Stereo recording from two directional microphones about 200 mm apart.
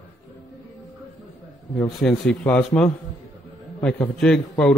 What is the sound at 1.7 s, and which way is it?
A man's voice, centre (ahead or behind).